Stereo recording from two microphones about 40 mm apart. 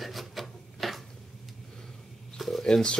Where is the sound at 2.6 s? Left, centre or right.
Centre.